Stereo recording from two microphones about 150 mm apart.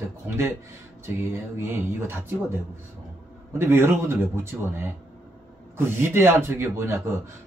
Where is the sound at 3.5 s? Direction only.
15° right (ahead or behind).